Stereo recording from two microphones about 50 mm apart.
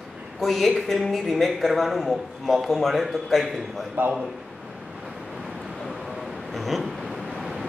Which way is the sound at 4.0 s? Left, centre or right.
Right.